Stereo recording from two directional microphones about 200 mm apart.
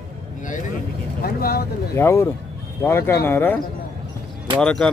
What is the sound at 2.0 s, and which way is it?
Speech, 15° left (ahead or behind).